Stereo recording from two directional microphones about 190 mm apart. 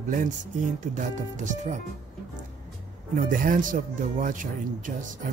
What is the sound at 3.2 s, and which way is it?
Speech, 45° right (ahead or behind).